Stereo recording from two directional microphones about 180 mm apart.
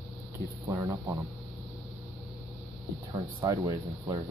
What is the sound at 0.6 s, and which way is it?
Speech, 20° right (ahead or behind).